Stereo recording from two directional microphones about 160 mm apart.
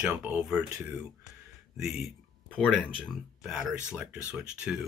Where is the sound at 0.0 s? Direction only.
5° right (ahead or behind).